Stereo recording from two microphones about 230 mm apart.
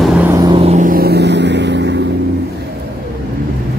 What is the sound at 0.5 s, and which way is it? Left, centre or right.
Vehicle, right.